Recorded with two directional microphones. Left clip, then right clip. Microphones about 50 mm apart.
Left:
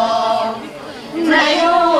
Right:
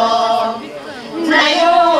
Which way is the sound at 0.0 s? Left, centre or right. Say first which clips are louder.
Right 2 dB; right.